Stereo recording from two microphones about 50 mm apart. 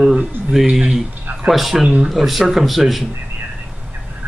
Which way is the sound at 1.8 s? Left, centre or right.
Right.